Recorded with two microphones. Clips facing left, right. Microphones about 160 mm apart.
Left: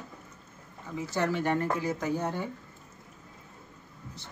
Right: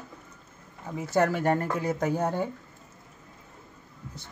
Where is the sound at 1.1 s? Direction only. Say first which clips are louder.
Right 5 dB; 55° right (ahead or behind).